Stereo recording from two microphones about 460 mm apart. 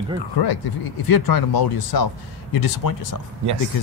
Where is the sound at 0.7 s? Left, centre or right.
Left.